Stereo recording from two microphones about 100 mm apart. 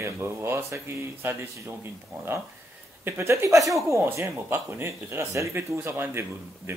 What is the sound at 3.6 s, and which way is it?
Speech, centre (ahead or behind).